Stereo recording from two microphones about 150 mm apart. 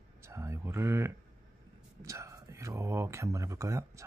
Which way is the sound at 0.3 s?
20° right (ahead or behind).